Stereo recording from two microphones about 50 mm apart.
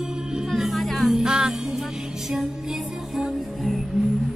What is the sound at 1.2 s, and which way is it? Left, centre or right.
Music, centre.